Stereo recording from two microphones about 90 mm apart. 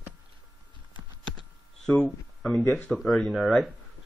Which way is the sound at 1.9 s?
25° left (ahead or behind).